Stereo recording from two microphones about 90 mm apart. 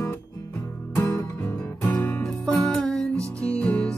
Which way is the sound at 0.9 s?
30° left (ahead or behind).